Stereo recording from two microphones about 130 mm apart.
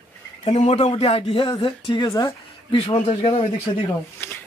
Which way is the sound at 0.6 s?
60° left (ahead or behind).